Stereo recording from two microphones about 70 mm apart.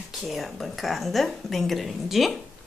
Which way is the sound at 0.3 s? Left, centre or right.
Centre.